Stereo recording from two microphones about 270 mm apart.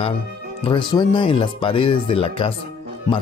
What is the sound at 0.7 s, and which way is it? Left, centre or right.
Speech, centre.